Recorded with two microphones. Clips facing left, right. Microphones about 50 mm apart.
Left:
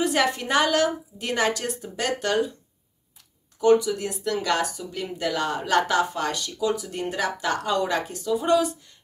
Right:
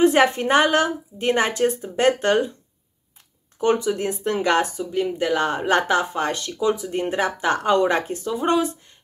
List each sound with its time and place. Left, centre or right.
0.0 s speech: right
3.5 s speech: right